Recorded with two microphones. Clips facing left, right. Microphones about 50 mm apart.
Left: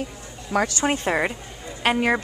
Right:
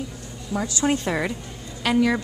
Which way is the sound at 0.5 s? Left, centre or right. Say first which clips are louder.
Left 4 dB; left.